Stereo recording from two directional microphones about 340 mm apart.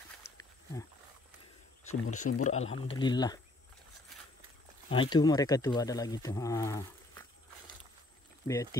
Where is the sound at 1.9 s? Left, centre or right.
Left.